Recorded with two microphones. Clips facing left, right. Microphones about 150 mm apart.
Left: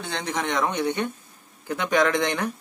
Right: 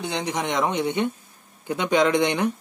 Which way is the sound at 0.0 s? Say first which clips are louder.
Right 2 dB; 15° right (ahead or behind).